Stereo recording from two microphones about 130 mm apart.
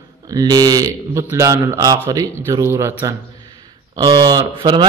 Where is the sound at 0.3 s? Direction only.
30° right (ahead or behind).